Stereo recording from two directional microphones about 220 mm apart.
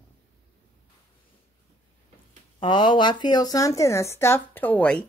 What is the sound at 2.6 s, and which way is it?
Speech, 20° left (ahead or behind).